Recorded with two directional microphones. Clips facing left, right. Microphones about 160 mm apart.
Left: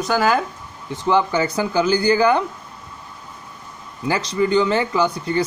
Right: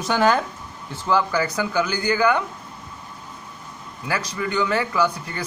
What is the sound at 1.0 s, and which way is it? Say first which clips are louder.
Speech: left 3 dB; 20° left (ahead or behind).